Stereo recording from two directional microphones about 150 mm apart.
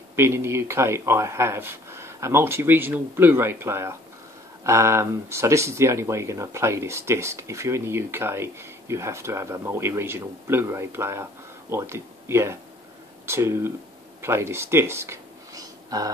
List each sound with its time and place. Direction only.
0.1 s speech: 15° right (ahead or behind)